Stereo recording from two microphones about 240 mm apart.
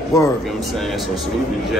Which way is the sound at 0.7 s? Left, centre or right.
Centre.